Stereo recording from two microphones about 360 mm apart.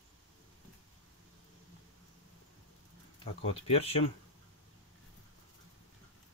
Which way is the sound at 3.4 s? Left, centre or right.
Centre.